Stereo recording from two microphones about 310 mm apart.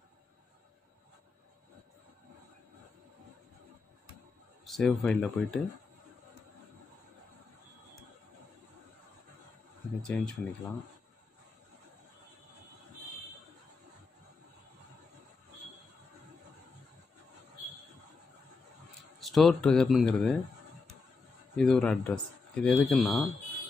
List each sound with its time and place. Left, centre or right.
4.6 s speech: centre
10.0 s speech: centre
19.1 s speech: centre
21.5 s speech: centre